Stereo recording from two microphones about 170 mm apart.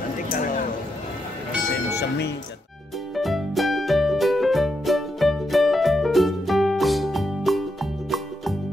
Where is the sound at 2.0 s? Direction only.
75° left (ahead or behind).